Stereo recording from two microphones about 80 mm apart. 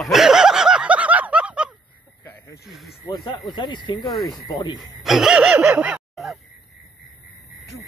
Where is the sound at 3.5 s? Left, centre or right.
Left.